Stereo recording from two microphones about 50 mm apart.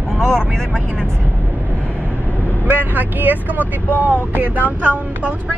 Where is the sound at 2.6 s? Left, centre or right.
Right.